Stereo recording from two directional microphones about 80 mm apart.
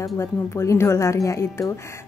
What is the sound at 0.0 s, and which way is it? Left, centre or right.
Speech, left.